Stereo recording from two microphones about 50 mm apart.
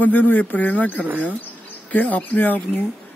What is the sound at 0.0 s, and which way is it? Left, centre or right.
Speech, left.